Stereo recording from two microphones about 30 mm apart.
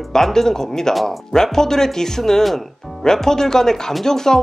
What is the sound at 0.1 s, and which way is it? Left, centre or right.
Speech, centre.